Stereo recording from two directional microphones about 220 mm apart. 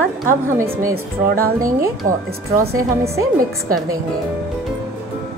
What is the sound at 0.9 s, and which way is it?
Speech, 40° right (ahead or behind).